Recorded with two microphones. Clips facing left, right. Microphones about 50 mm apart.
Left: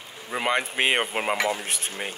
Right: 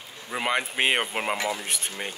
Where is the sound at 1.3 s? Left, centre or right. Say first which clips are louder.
Left 3 dB; left.